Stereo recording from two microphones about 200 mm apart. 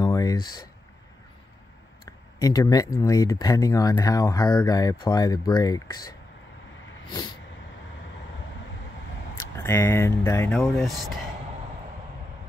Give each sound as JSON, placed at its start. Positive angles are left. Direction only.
{"t": 0.0, "sound": "a sound", "side_deg": 15}
{"t": 2.0, "sound": "speech", "side_deg": 15}
{"t": 7.1, "sound": "vehicle", "side_deg": 20}
{"t": 9.6, "sound": "speech", "side_deg": 10}
{"t": 10.8, "sound": "speech", "side_deg": 0}